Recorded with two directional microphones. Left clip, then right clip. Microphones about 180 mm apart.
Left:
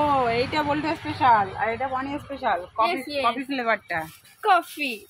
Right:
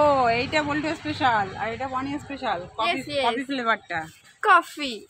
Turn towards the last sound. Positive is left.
turn(degrees=-20)  # may be behind; listen again after turning